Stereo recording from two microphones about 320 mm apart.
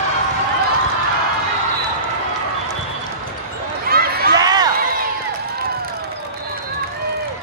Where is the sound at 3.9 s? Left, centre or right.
Right.